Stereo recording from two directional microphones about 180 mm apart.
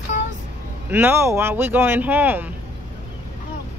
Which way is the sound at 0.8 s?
10° right (ahead or behind).